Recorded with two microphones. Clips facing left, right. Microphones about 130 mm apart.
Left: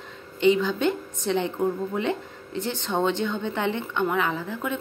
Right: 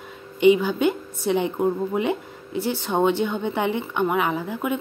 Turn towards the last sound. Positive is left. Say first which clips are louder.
# right 3 dB
turn(degrees=-15)  # may be behind; listen again after turning